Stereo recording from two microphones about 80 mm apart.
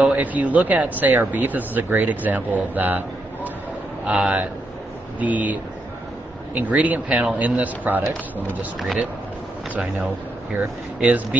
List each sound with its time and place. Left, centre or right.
0.0 s speech: centre
4.0 s speech: centre
11.0 s speech: centre